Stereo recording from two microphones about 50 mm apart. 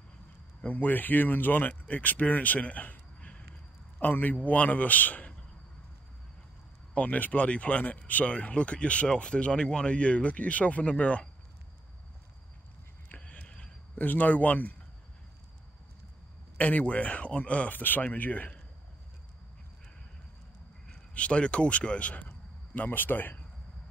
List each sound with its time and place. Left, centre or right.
0.6 s speech: left
4.0 s a man's voice: left
6.9 s speech: left
13.1 s a sound: left
14.0 s a man's voice: left
16.5 s speech: left
21.1 s speech: left
22.8 s a man's voice: left